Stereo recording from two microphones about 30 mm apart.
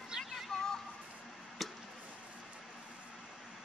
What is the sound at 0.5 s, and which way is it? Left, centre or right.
Speech, centre.